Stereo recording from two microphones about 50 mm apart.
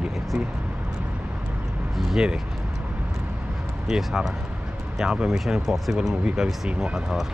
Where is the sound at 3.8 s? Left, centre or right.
Centre.